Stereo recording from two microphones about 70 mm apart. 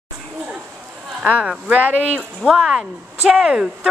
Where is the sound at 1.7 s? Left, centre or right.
Right.